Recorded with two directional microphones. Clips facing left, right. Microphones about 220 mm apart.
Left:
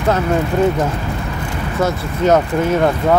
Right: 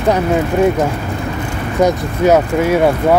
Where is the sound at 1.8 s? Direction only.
15° right (ahead or behind).